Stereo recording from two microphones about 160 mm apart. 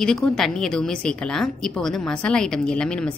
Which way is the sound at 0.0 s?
5° left (ahead or behind).